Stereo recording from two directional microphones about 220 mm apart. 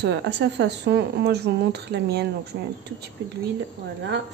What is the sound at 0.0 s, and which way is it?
Speech, 50° right (ahead or behind).